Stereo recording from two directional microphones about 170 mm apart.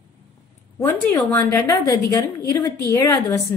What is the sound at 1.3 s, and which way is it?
A woman's voice, 20° left (ahead or behind).